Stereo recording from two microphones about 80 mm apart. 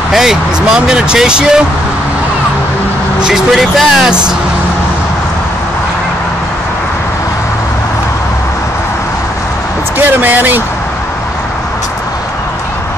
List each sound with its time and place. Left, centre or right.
0.1 s speech: centre
3.3 s speech: centre
9.9 s speech: right